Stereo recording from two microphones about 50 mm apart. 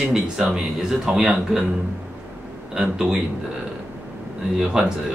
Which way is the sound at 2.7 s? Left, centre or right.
Centre.